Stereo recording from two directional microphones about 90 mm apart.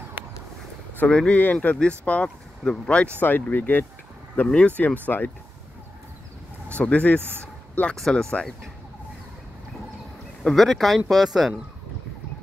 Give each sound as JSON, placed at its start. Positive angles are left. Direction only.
{"t": 0.9, "sound": "speech", "side_deg": 10}
{"t": 6.8, "sound": "speech", "side_deg": 15}
{"t": 7.9, "sound": "speech", "side_deg": 5}
{"t": 10.4, "sound": "speech", "side_deg": 0}